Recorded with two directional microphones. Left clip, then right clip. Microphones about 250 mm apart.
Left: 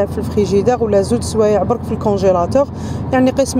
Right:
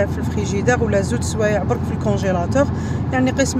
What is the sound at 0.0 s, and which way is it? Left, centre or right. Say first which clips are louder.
Speech: left 5 dB; centre.